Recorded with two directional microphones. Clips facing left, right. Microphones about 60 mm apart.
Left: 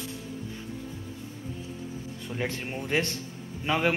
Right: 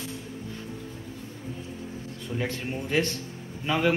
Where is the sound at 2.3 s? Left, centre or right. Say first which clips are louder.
Right 1 dB; centre.